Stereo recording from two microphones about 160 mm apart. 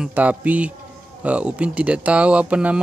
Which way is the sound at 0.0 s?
10° right (ahead or behind).